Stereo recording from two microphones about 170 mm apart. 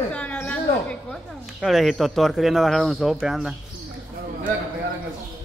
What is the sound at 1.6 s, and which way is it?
Speech, centre (ahead or behind).